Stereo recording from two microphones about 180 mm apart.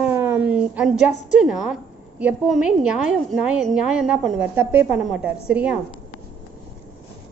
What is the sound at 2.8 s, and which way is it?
A woman's voice, 5° right (ahead or behind).